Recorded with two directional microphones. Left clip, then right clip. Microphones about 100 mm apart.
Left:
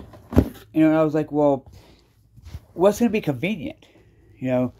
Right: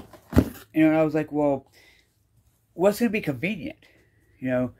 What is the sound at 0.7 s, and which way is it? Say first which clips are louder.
Speech: left 2 dB; 20° left (ahead or behind).